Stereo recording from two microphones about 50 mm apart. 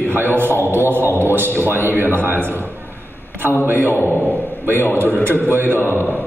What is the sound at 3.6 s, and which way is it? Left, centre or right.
Speech, right.